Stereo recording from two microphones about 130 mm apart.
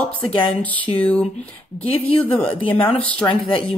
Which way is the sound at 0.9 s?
10° left (ahead or behind).